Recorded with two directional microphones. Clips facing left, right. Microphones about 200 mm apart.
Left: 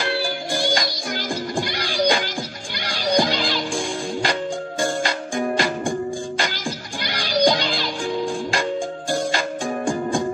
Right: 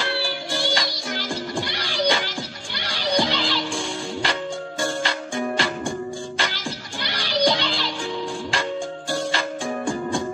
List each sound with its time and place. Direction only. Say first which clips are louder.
0.7 s music: left 2 dB; 45° left (ahead or behind)